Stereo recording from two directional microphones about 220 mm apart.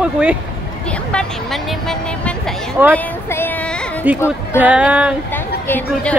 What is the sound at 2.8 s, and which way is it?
Speech, 10° right (ahead or behind).